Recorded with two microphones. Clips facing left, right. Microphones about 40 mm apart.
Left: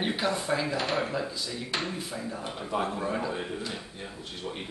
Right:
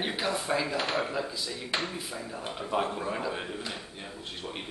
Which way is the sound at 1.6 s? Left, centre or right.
Centre.